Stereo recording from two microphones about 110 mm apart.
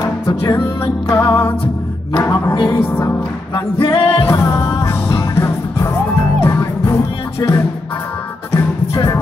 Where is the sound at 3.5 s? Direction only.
55° left (ahead or behind).